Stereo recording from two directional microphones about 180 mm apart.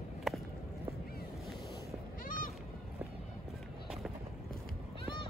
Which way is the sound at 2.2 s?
50° left (ahead or behind).